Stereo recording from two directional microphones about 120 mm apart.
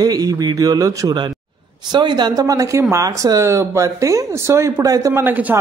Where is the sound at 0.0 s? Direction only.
30° right (ahead or behind).